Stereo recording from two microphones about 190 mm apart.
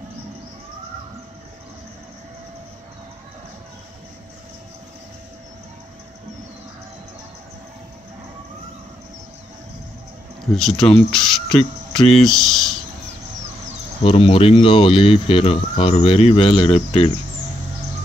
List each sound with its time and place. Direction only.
10.5 s speech: centre (ahead or behind)
14.0 s speech: 30° left (ahead or behind)